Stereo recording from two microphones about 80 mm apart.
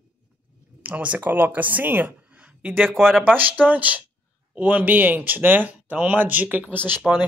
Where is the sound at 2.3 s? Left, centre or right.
Centre.